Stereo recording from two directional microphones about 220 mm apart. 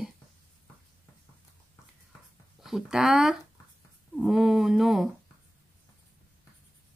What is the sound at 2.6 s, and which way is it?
Speech, centre (ahead or behind).